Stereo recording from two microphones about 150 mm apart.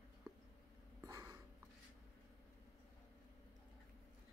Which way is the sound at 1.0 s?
20° right (ahead or behind).